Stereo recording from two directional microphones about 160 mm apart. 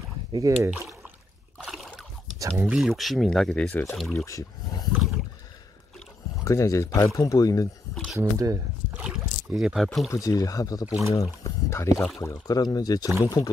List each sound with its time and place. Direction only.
0.7 s speech: 5° right (ahead or behind)
1.6 s splash: centre (ahead or behind)
2.3 s a sound: 20° right (ahead or behind)
2.6 s speech: 5° right (ahead or behind)
4.1 s speech: 20° left (ahead or behind)
6.4 s speech: 20° left (ahead or behind)
7.9 s a sound: 5° left (ahead or behind)
8.2 s speech: 20° right (ahead or behind)
8.9 s rowboat: 5° right (ahead or behind)
10.1 s speech: 20° left (ahead or behind)